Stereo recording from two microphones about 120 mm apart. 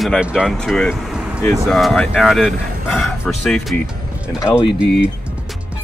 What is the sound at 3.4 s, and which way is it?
Speech, centre (ahead or behind).